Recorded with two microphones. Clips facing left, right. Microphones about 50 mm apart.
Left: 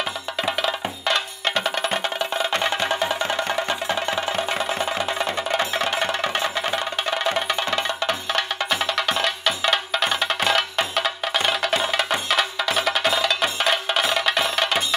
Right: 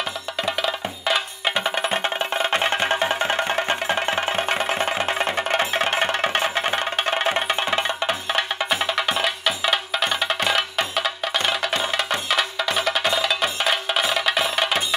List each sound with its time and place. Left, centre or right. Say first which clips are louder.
0.4 s music: even; centre
2.0 s music: right 1 dB; right
5.6 s music: right 1 dB; centre
6.3 s music: right 2 dB; right; by 15.0 s centre